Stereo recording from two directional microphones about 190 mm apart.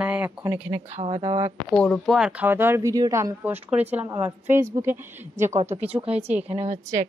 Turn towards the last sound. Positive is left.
turn(degrees=-40)  # may be behind; listen again after turning